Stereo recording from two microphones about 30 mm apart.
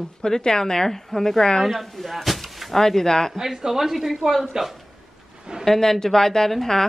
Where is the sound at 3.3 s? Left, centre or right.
Centre.